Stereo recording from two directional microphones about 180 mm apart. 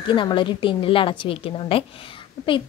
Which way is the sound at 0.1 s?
25° left (ahead or behind).